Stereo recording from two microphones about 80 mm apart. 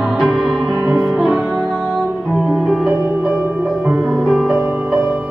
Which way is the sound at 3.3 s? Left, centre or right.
Centre.